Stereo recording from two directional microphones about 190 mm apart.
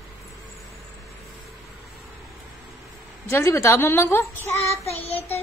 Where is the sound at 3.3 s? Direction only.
15° left (ahead or behind).